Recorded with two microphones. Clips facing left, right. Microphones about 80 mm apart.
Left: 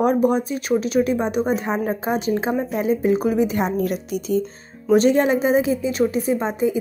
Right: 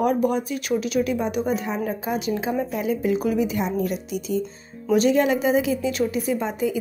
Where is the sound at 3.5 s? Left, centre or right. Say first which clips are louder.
Left 3 dB; left.